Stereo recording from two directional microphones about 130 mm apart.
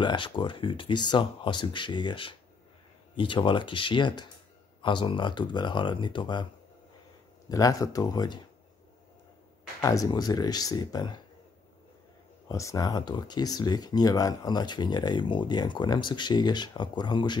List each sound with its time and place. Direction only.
0.0 s speech: 40° left (ahead or behind)
7.4 s speech: 25° left (ahead or behind)
9.8 s speech: 25° left (ahead or behind)
12.4 s speech: 25° left (ahead or behind)